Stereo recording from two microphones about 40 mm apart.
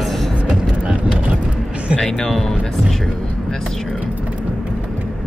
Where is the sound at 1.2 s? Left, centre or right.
Right.